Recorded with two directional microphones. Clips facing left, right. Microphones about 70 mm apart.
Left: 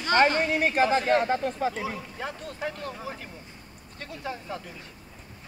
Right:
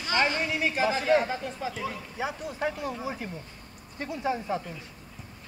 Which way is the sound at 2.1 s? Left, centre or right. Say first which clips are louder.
Right 3 dB; centre.